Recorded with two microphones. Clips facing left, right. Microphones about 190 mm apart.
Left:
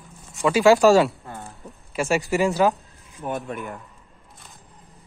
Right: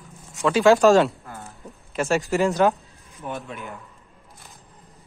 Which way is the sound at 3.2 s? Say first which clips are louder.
Left 4 dB; 45° left (ahead or behind).